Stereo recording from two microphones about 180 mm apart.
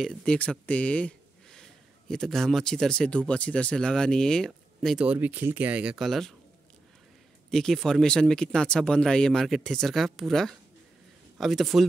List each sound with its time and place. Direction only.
0.0 s speech: 5° left (ahead or behind)
7.5 s speech: centre (ahead or behind)